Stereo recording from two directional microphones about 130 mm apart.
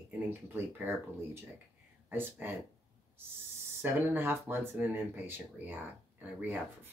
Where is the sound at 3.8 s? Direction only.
15° right (ahead or behind).